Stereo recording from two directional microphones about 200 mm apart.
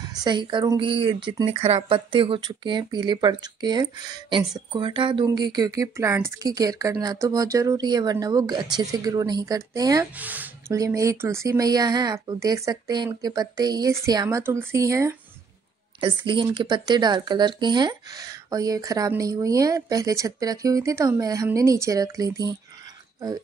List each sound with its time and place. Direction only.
0.0 s speech: 20° right (ahead or behind)
16.0 s speech: 25° right (ahead or behind)